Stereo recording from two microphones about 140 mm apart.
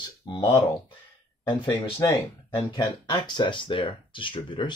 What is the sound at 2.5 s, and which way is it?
Speech, 30° left (ahead or behind).